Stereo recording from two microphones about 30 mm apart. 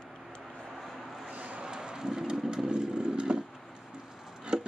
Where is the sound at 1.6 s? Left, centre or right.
Right.